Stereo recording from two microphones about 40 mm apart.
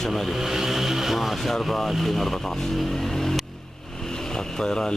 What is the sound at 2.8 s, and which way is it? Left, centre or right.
Vehicle, centre.